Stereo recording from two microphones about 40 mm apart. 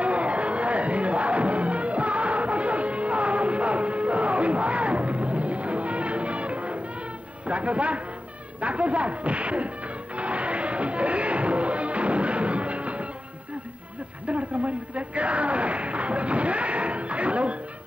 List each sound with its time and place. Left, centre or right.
0.0 s music: right
7.4 s a man's voice: right
10.1 s music: right
14.2 s a sound: right